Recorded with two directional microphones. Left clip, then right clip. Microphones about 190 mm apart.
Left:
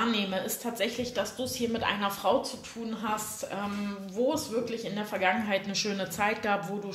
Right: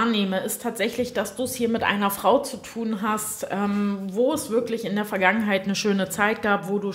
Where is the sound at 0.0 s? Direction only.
45° right (ahead or behind).